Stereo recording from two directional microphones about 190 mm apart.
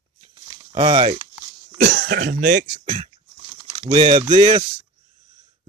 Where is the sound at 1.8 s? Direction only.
50° right (ahead or behind).